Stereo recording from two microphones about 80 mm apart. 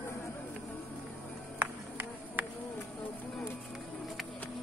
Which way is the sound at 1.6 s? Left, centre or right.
Right.